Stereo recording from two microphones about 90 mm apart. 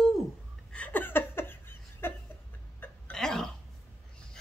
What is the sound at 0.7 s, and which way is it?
Laughter, 20° left (ahead or behind).